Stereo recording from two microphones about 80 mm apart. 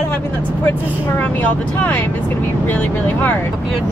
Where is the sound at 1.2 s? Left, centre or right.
Left.